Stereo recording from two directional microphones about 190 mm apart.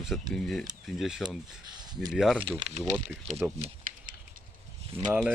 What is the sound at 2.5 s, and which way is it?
Speech, 35° right (ahead or behind).